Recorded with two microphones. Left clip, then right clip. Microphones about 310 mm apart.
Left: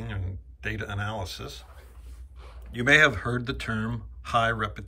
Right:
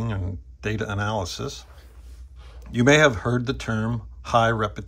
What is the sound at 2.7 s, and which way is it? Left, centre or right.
Speech, centre.